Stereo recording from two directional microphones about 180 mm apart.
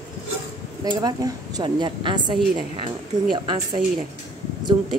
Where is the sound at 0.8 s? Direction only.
20° right (ahead or behind).